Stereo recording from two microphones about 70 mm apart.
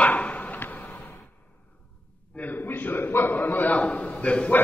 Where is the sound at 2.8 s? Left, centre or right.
Left.